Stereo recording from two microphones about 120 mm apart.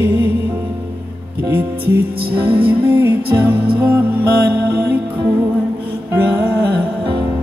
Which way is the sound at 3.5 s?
45° right (ahead or behind).